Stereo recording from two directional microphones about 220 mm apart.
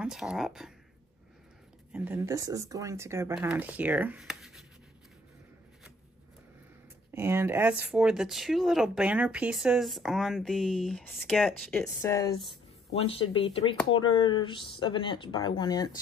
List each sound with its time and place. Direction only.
0.0 s speech: 5° right (ahead or behind)
1.9 s speech: 5° right (ahead or behind)
7.1 s speech: 10° right (ahead or behind)
11.8 s speech: 15° left (ahead or behind)
12.9 s speech: 25° left (ahead or behind)